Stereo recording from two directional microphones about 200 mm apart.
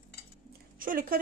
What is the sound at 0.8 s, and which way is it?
Speech, 45° right (ahead or behind).